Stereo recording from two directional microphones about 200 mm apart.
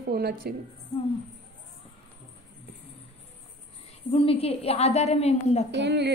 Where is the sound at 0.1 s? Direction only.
50° right (ahead or behind).